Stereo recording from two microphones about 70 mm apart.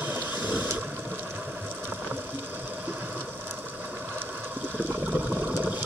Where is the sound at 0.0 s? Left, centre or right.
Right.